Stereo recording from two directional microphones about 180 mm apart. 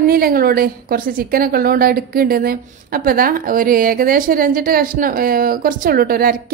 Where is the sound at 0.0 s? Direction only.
55° right (ahead or behind).